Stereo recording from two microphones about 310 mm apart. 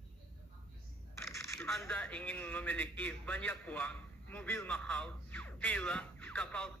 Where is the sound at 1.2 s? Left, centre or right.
Centre.